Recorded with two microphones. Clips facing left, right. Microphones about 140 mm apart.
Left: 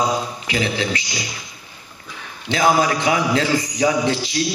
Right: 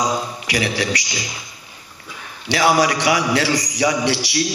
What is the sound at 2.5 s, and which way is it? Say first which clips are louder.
A man's voice: right 1 dB; 80° right.